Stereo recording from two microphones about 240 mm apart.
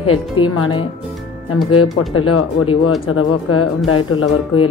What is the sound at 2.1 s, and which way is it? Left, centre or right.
Speech, left.